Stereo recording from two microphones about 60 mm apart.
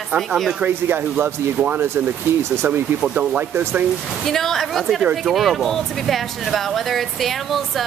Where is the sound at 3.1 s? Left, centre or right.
Right.